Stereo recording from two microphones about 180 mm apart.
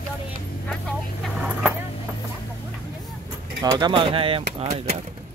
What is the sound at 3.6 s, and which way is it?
Speech, 25° right (ahead or behind).